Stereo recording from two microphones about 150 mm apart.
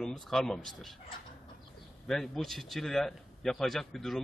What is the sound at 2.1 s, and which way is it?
A man's voice, 5° left (ahead or behind).